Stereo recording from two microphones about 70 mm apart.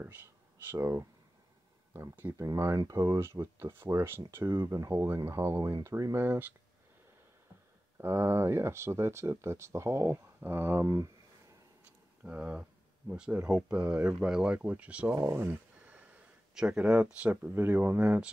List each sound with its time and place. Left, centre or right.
0.7 s speech: right
2.3 s speech: right
5.6 s speech: right
6.2 s speech: right
8.0 s speech: right
10.8 s speech: right
12.3 s speech: centre
15.3 s a sound: right
16.5 s speech: centre
17.3 s speech: right